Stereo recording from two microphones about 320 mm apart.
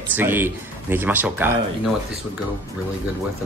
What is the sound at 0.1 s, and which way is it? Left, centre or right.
Speech, centre.